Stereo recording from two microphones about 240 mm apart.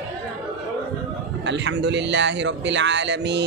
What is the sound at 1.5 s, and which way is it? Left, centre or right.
Speech, right.